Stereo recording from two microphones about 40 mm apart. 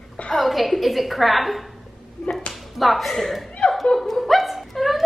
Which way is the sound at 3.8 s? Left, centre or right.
Centre.